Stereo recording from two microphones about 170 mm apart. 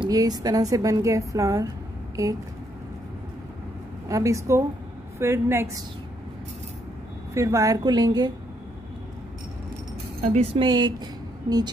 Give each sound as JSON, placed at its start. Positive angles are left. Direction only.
{"t": 0.0, "sound": "a woman's voice", "side_deg": -20}
{"t": 4.1, "sound": "a woman's voice", "side_deg": -20}
{"t": 7.3, "sound": "a woman's voice", "side_deg": -20}
{"t": 10.3, "sound": "a woman's voice", "side_deg": -35}